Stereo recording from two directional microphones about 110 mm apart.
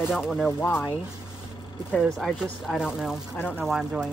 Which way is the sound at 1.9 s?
Centre (ahead or behind).